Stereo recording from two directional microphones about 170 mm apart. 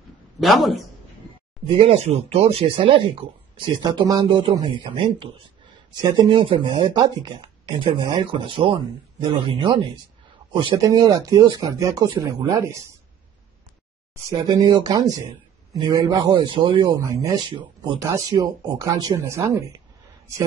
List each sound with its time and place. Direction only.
0.4 s a man's voice: centre (ahead or behind)
1.7 s speech: 30° right (ahead or behind)
14.5 s speech: 25° right (ahead or behind)